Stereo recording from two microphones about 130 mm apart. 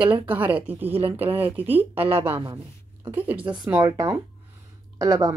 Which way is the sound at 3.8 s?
20° right (ahead or behind).